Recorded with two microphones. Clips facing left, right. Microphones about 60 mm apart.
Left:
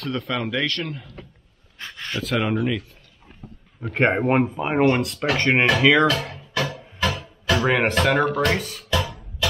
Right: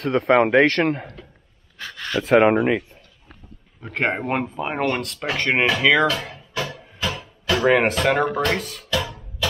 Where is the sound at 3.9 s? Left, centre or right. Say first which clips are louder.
Left 4 dB; centre.